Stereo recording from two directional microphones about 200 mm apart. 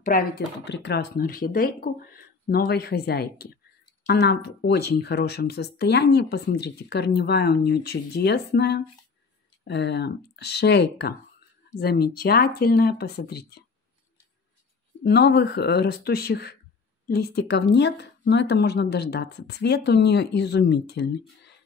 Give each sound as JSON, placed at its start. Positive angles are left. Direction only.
{"t": 0.1, "sound": "speech", "side_deg": 45}
{"t": 0.7, "sound": "speech", "side_deg": 55}
{"t": 15.0, "sound": "speech", "side_deg": 55}